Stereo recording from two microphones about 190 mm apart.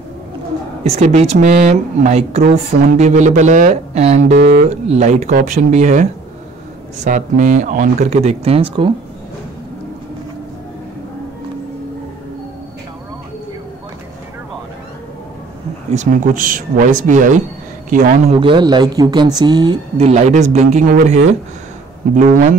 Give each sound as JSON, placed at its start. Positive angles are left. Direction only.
{"t": 0.8, "sound": "speech", "side_deg": -35}
{"t": 7.1, "sound": "speech", "side_deg": -40}
{"t": 15.9, "sound": "speech", "side_deg": -40}
{"t": 18.4, "sound": "speech", "side_deg": -25}
{"t": 20.0, "sound": "speech", "side_deg": -35}